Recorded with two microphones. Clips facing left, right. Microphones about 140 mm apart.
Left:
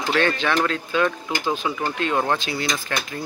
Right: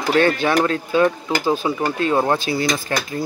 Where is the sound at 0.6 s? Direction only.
30° right (ahead or behind).